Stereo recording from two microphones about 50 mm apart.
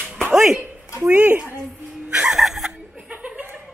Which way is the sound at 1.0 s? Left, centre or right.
Right.